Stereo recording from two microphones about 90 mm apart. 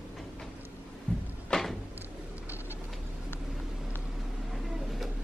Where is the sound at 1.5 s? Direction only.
5° left (ahead or behind).